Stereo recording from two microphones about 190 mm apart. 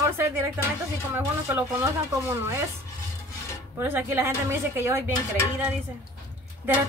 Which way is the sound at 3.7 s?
10° right (ahead or behind).